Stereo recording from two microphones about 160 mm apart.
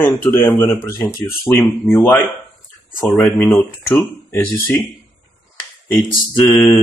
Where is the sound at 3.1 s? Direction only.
15° left (ahead or behind).